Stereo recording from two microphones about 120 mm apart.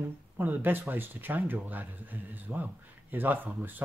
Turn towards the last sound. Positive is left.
turn(degrees=-15)  # may be behind; listen again after turning